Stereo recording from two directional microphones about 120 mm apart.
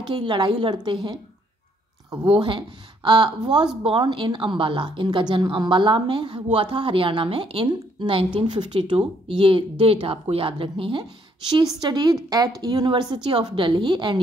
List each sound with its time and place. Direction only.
0.1 s a woman's voice: 45° right (ahead or behind)
2.2 s a woman's voice: 45° right (ahead or behind)